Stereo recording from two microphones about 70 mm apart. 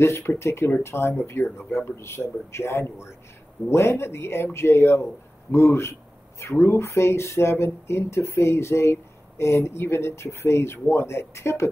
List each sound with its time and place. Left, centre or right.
0.0 s speech: left